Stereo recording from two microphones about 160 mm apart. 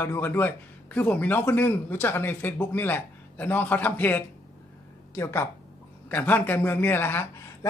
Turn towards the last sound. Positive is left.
turn(degrees=15)  # may be behind; listen again after turning